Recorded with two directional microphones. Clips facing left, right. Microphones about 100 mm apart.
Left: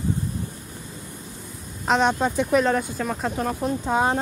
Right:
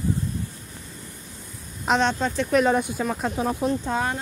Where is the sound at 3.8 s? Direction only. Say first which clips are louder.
Left 4 dB; 20° left (ahead or behind).